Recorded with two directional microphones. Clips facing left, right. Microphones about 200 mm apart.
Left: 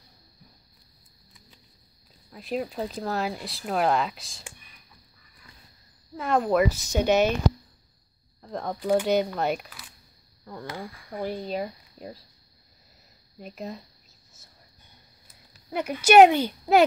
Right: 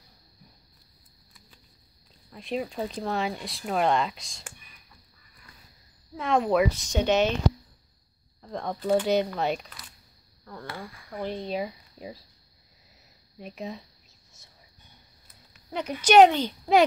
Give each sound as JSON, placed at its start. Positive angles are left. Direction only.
{"t": 2.3, "sound": "speech", "side_deg": 0}
{"t": 6.1, "sound": "speech", "side_deg": 0}
{"t": 8.4, "sound": "a sound", "side_deg": 0}
{"t": 8.7, "sound": "a woman's voice", "side_deg": 10}
{"t": 9.0, "sound": "speech", "side_deg": 0}
{"t": 10.4, "sound": "speech", "side_deg": 15}
{"t": 11.2, "sound": "speech", "side_deg": 5}
{"t": 13.4, "sound": "speech", "side_deg": 0}
{"t": 15.7, "sound": "a woman's voice", "side_deg": 10}